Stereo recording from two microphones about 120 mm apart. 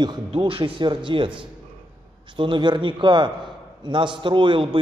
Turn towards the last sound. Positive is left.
turn(degrees=-45)  # may be behind; listen again after turning